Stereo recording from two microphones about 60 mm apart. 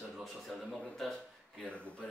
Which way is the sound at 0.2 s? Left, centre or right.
Centre.